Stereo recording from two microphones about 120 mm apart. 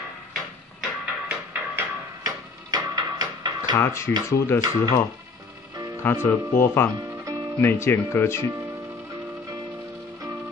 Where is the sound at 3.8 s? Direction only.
20° left (ahead or behind).